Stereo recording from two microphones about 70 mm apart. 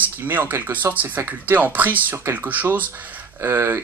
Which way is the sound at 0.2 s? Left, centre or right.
Right.